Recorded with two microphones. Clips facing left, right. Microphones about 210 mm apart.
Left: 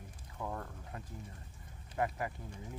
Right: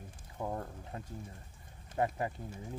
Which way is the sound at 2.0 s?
25° right (ahead or behind).